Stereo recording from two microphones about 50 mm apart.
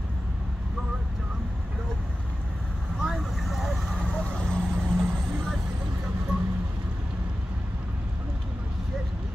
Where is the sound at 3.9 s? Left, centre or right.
Centre.